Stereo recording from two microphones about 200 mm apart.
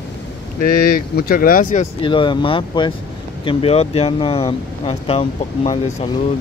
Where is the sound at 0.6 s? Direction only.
50° left (ahead or behind).